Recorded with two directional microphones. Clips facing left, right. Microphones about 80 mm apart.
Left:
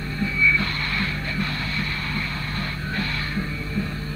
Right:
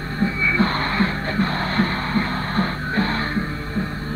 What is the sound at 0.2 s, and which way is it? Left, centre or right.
Music, right.